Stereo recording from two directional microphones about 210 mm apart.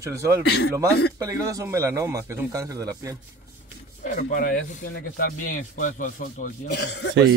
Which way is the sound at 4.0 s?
40° left (ahead or behind).